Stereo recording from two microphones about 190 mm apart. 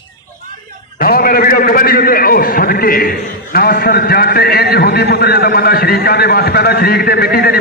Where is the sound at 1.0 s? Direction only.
50° left (ahead or behind).